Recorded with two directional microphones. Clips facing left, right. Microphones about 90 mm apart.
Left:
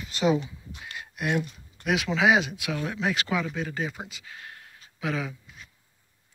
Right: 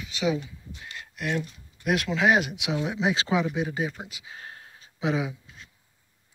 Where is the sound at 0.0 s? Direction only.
40° left (ahead or behind).